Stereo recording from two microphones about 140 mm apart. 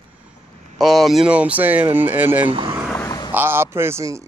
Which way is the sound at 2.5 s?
40° right (ahead or behind).